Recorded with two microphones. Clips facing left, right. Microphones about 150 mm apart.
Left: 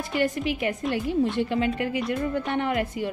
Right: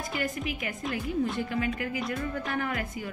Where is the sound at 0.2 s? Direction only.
30° left (ahead or behind).